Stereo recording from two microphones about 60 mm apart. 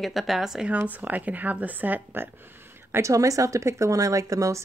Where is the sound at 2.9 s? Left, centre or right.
Right.